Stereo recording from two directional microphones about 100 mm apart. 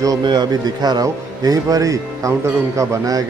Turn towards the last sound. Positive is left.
turn(degrees=-35)  # may be behind; listen again after turning